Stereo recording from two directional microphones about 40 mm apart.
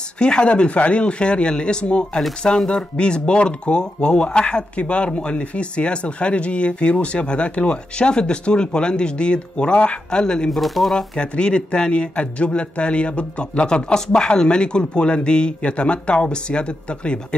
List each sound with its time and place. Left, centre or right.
0.2 s speech: left
2.4 s speech: centre
10.5 s speech: centre
11.1 s speech: left